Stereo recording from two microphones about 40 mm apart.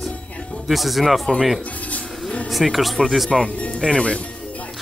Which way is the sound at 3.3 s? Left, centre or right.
Left.